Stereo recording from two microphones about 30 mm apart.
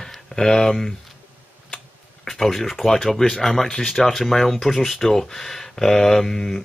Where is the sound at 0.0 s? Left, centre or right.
Centre.